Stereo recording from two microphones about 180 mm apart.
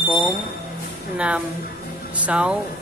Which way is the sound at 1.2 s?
5° right (ahead or behind).